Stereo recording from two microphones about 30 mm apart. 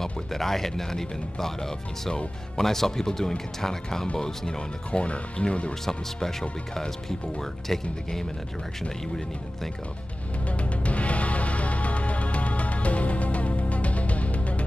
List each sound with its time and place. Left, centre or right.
0.0 s speech: centre
4.2 s speech: left
5.0 s speech: left
6.7 s speech: left
10.6 s music: left